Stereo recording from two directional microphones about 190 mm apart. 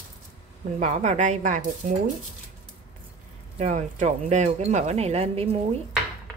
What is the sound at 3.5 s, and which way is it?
Speech, 40° right (ahead or behind).